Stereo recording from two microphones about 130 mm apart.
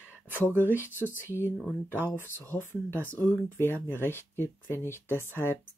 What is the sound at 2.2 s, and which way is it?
Speech, 20° right (ahead or behind).